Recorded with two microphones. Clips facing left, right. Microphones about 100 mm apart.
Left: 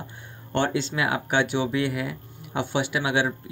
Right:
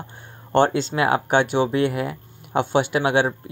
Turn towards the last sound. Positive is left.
turn(degrees=-45)  # may be behind; listen again after turning